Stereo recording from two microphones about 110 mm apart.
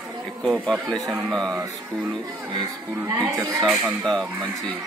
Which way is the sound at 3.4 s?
30° right (ahead or behind).